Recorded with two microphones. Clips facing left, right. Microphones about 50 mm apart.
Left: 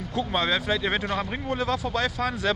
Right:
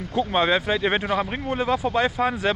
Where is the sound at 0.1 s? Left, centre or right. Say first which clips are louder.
Right 5 dB; right.